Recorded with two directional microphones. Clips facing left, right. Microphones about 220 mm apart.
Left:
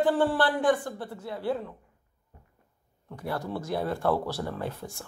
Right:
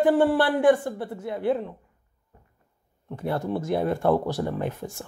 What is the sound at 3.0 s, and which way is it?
A woman's voice, 20° right (ahead or behind).